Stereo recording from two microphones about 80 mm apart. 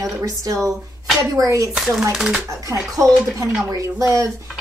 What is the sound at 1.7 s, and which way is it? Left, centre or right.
Speech, centre.